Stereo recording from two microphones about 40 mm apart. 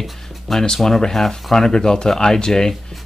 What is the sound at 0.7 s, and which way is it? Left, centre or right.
Speech, centre.